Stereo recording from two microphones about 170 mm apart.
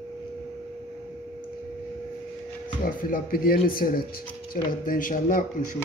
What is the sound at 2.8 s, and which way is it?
Speech, 55° left (ahead or behind).